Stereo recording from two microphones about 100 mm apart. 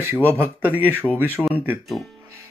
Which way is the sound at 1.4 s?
5° right (ahead or behind).